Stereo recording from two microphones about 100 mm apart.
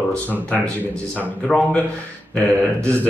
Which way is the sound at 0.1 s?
10° left (ahead or behind).